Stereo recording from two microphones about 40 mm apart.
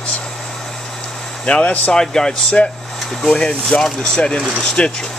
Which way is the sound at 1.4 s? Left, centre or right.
Left.